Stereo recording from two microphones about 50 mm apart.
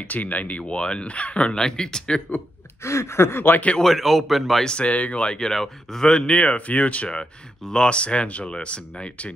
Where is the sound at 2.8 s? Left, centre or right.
Left.